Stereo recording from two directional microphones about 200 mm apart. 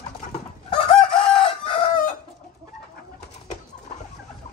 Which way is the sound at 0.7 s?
25° left (ahead or behind).